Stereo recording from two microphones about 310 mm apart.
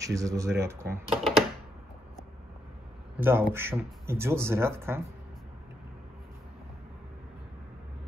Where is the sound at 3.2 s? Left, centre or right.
Centre.